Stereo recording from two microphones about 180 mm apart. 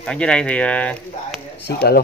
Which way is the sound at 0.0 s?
5° left (ahead or behind).